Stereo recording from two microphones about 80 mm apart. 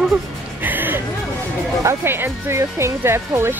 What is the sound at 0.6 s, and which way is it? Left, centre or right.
Music, right.